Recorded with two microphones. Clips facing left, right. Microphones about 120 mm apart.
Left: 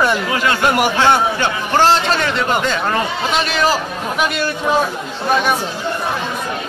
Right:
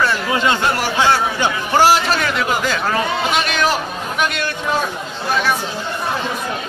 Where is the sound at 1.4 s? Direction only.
10° right (ahead or behind).